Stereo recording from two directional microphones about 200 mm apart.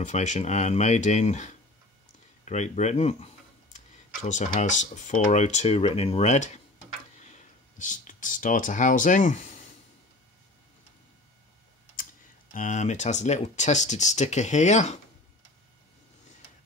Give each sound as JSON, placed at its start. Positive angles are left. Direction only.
{"t": 0.0, "sound": "speech", "side_deg": 35}
{"t": 12.5, "sound": "speech", "side_deg": 40}